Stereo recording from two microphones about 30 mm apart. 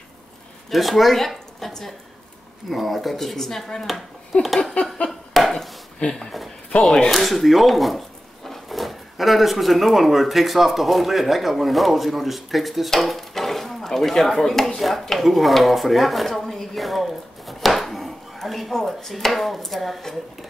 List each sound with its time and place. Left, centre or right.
0.7 s a woman's voice: centre
2.7 s speech: centre
4.3 s a sound: left
5.4 s chopping: centre
6.0 s speech: left
6.7 s speech: left
7.1 s speech: centre
13.3 s a sound: centre
14.4 s speech: centre
14.8 s speech: centre
16.3 s chopping: centre
18.8 s speech: centre